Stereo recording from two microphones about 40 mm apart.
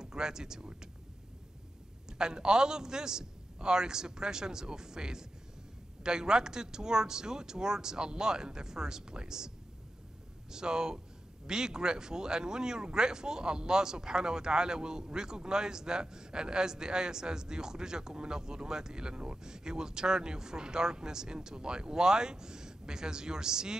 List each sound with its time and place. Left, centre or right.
0.0 s speech: centre
2.0 s speech: centre
10.5 s speech: centre